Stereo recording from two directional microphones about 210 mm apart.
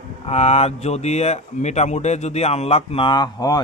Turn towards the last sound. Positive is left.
turn(degrees=20)  # may be behind; listen again after turning